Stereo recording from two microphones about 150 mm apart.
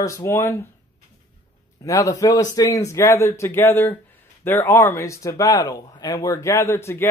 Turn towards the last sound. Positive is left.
turn(degrees=20)  # may be behind; listen again after turning